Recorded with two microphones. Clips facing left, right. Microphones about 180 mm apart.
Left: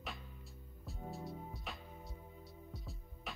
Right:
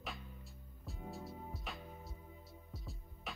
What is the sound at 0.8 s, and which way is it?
Music, centre (ahead or behind).